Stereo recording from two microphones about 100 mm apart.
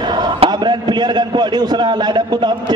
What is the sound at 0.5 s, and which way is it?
A man's voice, 45° right (ahead or behind).